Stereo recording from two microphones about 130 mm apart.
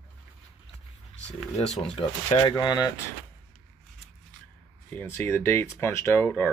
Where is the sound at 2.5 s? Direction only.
30° left (ahead or behind).